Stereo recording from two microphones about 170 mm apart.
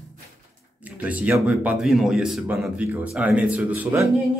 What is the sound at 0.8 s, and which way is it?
Speech, 10° right (ahead or behind).